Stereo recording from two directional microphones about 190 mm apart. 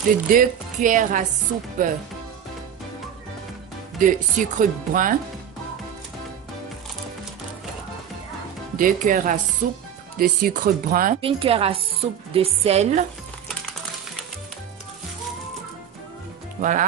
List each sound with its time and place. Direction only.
0.3 s speech: 45° right (ahead or behind)
4.0 s speech: 45° right (ahead or behind)
8.7 s speech: 45° right (ahead or behind)
11.1 s speech: 30° right (ahead or behind)
16.6 s speech: 50° right (ahead or behind)